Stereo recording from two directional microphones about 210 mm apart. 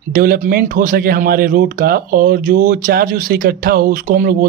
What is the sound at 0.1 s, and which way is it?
Speech, 45° right (ahead or behind).